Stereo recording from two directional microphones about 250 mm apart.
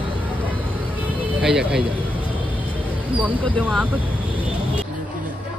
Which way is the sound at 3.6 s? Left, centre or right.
Centre.